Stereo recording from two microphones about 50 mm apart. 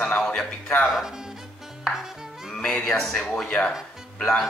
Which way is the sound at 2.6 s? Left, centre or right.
Centre.